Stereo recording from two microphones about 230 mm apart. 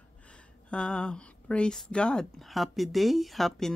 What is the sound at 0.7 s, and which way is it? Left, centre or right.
Speech, centre.